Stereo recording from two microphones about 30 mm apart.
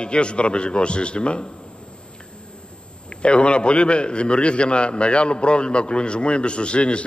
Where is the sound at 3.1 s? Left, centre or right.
Left.